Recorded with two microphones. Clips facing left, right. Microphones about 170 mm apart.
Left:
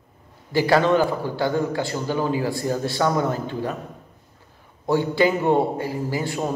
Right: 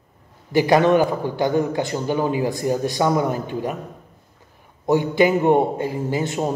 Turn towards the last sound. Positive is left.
turn(degrees=-20)  # may be behind; listen again after turning